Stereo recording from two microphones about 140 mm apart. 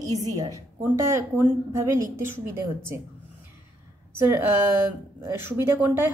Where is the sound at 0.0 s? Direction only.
25° right (ahead or behind).